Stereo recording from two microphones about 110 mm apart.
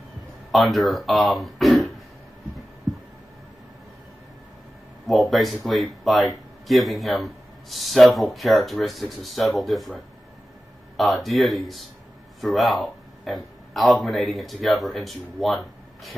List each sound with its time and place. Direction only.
0.5 s speech: centre (ahead or behind)
5.0 s a man's voice: centre (ahead or behind)